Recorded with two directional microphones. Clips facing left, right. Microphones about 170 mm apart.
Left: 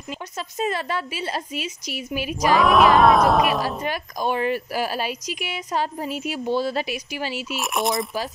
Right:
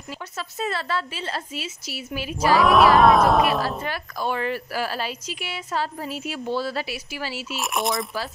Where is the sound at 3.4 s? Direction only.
15° left (ahead or behind).